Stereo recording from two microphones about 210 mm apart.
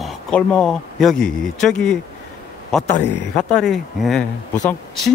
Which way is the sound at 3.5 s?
Centre (ahead or behind).